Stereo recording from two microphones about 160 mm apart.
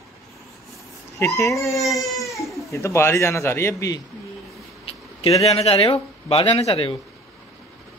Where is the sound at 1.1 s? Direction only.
20° left (ahead or behind).